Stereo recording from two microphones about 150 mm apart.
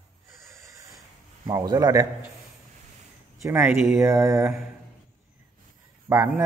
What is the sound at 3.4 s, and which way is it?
Speech, 15° right (ahead or behind).